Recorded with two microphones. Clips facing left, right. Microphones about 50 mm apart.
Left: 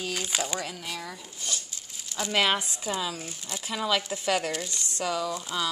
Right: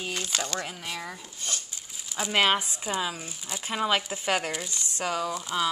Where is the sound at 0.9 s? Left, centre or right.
Right.